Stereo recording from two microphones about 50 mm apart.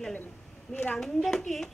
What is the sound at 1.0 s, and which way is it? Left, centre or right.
Speech, centre.